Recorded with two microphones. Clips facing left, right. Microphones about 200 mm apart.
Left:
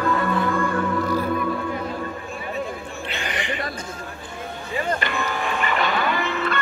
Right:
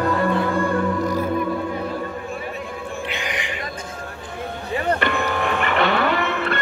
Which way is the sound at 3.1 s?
15° right (ahead or behind).